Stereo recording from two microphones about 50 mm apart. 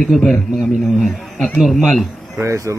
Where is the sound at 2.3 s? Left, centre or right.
Right.